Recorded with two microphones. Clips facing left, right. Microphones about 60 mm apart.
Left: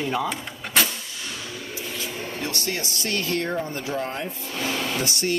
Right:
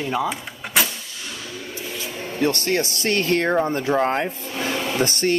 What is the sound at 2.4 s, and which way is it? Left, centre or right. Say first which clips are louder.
Speech: right 10 dB; right.